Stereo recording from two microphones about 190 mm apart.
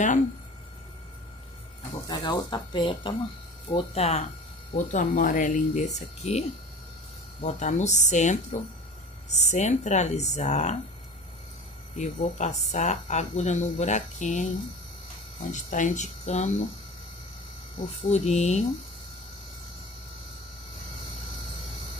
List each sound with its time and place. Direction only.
2.0 s speech: 20° left (ahead or behind)
7.4 s speech: 40° left (ahead or behind)
12.0 s speech: 35° left (ahead or behind)
18.0 s speech: 35° left (ahead or behind)